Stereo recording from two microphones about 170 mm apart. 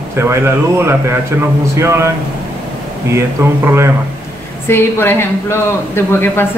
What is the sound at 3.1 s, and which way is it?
Speech, 15° right (ahead or behind).